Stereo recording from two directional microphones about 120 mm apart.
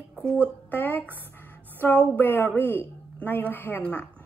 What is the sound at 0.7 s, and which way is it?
A woman's voice, 15° left (ahead or behind).